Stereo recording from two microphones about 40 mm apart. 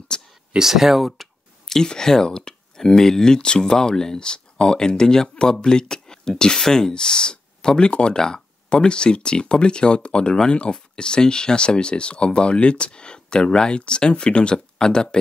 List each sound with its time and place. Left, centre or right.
0.1 s a sound: centre
0.6 s speech: centre
1.8 s speech: centre